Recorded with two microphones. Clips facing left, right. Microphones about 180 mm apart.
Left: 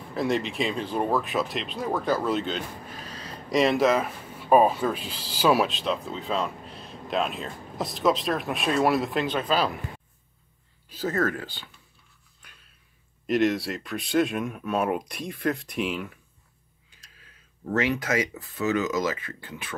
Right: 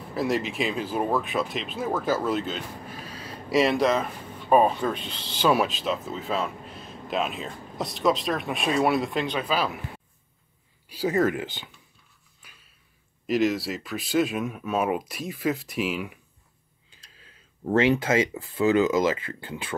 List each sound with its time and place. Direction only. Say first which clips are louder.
0.1 s speech: even; centre (ahead or behind)
10.9 s speech: right 3 dB; 10° right (ahead or behind)
12.4 s a sound: even; 5° right (ahead or behind)
13.3 s speech: even; centre (ahead or behind)
16.9 s speech: right 2 dB; 30° right (ahead or behind)